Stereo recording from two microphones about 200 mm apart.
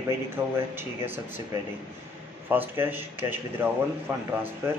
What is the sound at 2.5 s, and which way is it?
A man's voice, 10° right (ahead or behind).